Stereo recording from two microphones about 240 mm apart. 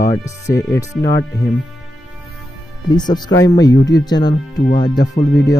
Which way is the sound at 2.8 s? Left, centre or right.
Centre.